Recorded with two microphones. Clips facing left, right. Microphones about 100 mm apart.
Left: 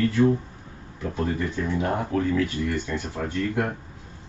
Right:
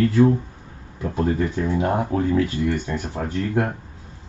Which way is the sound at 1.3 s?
25° right (ahead or behind).